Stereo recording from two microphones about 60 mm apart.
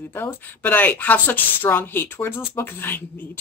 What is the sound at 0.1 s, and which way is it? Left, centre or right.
Speech, left.